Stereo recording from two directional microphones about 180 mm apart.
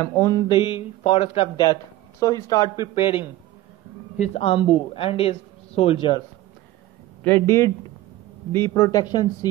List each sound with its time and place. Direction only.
0.0 s speech: 15° left (ahead or behind)
7.2 s a man's voice: 15° left (ahead or behind)